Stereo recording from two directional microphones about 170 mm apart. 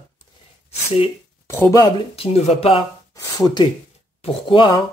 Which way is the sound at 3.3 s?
25° left (ahead or behind).